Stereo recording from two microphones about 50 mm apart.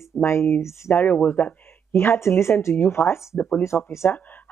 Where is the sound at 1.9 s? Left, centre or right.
Left.